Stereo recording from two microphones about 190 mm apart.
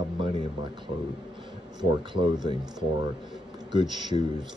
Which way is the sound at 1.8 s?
25° right (ahead or behind).